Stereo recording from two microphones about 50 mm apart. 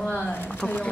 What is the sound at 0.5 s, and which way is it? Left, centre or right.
Speech, left.